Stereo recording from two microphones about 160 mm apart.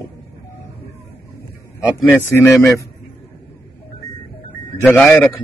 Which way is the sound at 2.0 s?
15° left (ahead or behind).